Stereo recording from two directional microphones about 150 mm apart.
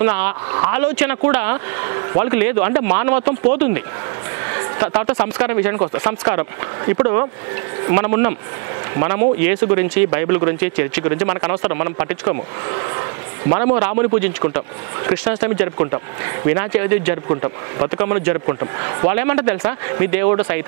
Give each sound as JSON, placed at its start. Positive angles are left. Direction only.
{"t": 0.0, "sound": "speech", "side_deg": -15}
{"t": 13.6, "sound": "speech", "side_deg": -15}
{"t": 17.3, "sound": "speech", "side_deg": -25}